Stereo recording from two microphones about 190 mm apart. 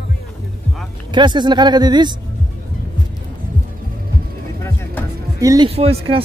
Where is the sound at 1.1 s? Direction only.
25° right (ahead or behind).